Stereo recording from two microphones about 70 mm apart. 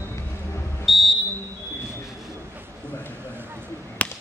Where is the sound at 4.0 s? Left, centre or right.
Centre.